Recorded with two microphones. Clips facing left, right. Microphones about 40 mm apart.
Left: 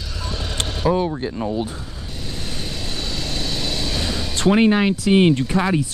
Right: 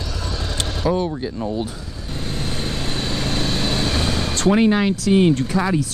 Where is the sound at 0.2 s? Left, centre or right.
Left.